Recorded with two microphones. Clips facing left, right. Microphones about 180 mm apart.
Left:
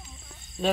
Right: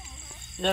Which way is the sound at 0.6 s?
Centre (ahead or behind).